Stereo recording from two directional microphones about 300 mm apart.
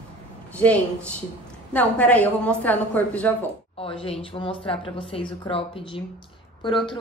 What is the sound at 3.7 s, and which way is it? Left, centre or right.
A woman's voice, centre.